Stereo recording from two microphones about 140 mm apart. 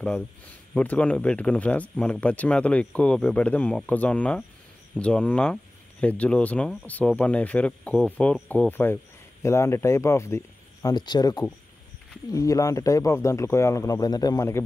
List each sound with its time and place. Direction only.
0.7 s speech: 10° left (ahead or behind); by 14.6 s 25° left (ahead or behind)